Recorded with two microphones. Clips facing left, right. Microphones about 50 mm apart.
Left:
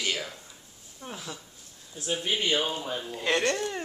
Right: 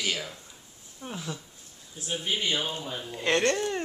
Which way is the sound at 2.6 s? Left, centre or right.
Centre.